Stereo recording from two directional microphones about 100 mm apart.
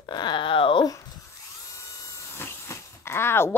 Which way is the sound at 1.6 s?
30° left (ahead or behind).